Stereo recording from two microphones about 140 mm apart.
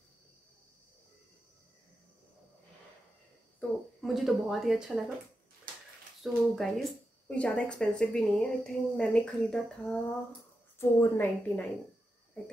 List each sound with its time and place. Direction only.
3.6 s speech: 10° left (ahead or behind)
4.0 s a woman's voice: centre (ahead or behind)
6.2 s a woman's voice: centre (ahead or behind)
10.8 s a woman's voice: 15° left (ahead or behind)